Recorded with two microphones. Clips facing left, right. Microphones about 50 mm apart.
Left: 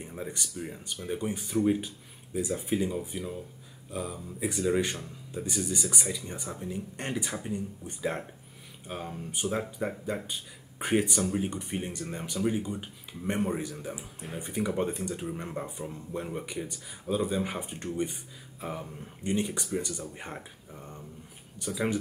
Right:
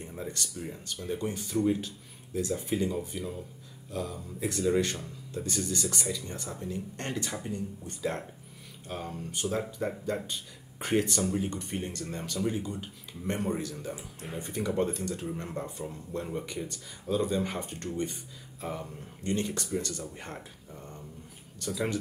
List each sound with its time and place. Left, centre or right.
0.0 s speech: centre